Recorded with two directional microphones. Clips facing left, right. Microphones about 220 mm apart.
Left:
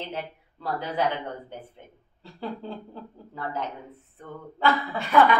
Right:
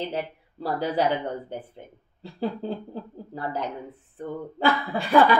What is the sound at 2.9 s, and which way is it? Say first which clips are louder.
Speech: right 6 dB; 35° right (ahead or behind).